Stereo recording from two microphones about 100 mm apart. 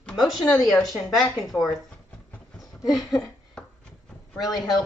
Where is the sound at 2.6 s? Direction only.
Centre (ahead or behind).